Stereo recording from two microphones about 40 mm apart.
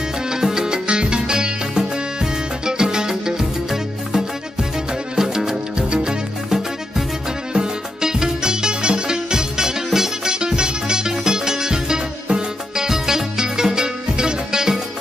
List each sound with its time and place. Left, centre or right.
0.3 s music: centre